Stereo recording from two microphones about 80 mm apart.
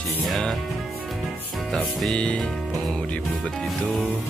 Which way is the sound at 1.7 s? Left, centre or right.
Centre.